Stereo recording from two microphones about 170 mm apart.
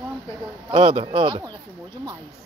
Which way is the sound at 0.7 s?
35° right (ahead or behind).